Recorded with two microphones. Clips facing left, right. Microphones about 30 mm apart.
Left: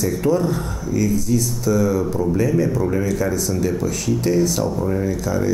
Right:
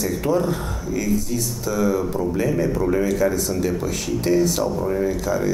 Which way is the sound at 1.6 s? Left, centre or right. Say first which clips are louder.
Even; right.